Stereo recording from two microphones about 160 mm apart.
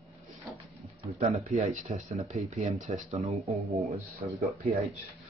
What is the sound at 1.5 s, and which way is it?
A man's voice, 50° right (ahead or behind).